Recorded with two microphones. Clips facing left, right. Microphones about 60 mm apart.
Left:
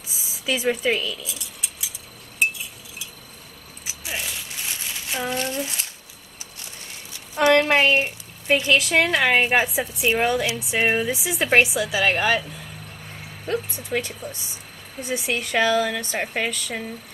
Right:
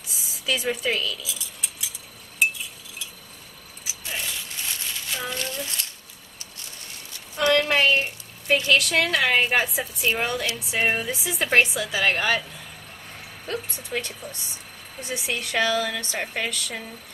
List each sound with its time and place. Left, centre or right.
0.1 s a sound: centre
4.0 s crumpling: centre
7.3 s a woman's voice: centre
9.6 s a woman's voice: centre